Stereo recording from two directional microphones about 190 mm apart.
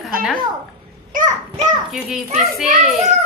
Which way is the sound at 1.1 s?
40° right (ahead or behind).